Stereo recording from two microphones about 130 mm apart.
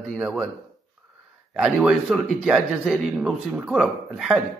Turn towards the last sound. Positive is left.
turn(degrees=0)  # may be behind; listen again after turning